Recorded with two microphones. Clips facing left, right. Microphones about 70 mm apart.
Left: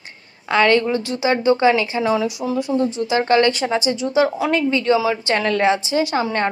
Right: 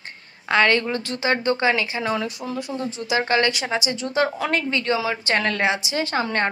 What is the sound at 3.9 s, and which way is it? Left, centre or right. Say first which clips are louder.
Speech: left 5 dB; centre.